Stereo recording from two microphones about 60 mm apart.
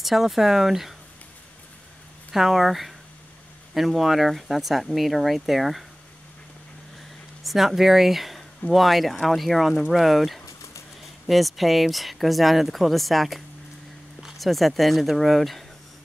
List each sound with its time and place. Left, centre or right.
0.0 s speech: centre
2.3 s speech: centre
7.4 s speech: centre
10.4 s a sound: left
11.2 s speech: centre
14.4 s speech: centre